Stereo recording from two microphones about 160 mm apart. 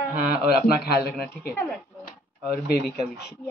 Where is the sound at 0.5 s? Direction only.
75° left (ahead or behind).